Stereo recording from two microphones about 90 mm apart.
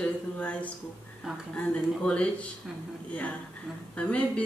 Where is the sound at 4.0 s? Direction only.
15° left (ahead or behind).